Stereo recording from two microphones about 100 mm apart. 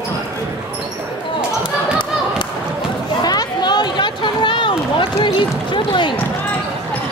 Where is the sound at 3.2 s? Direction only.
40° left (ahead or behind).